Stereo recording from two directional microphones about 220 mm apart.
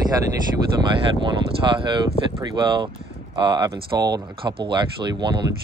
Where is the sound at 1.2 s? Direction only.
20° right (ahead or behind).